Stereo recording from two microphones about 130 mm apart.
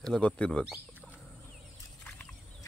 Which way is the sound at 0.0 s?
5° left (ahead or behind).